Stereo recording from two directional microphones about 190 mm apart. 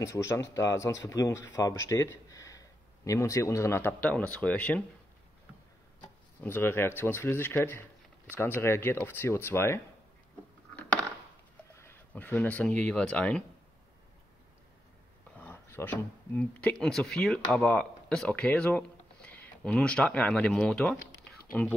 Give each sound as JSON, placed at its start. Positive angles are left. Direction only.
{"t": 0.0, "sound": "speech", "side_deg": 15}
{"t": 5.9, "sound": "a sound", "side_deg": 10}
{"t": 7.0, "sound": "speech", "side_deg": 10}
{"t": 11.7, "sound": "speech", "side_deg": 15}
{"t": 15.3, "sound": "speech", "side_deg": 10}
{"t": 21.2, "sound": "a sound", "side_deg": 5}